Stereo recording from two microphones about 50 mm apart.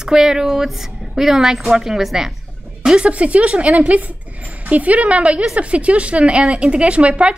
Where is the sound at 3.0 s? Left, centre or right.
Right.